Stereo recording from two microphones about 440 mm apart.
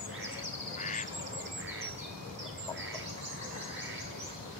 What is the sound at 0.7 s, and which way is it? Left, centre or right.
Duck, centre.